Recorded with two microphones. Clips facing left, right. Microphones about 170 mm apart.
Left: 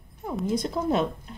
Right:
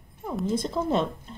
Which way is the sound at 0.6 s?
Centre (ahead or behind).